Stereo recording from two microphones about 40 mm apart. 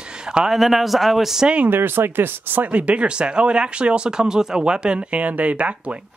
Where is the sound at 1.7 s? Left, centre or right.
Right.